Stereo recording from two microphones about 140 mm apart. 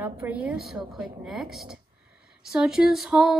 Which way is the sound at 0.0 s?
10° right (ahead or behind).